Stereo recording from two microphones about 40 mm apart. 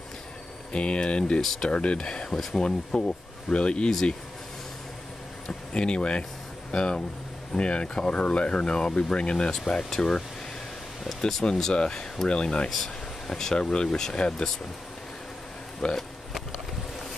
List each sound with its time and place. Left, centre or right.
0.7 s speech: left; by 3.0 s centre
3.4 s speech: left
5.7 s speech: left
11.7 s speech: left
12.6 s speech: centre
15.8 s speech: left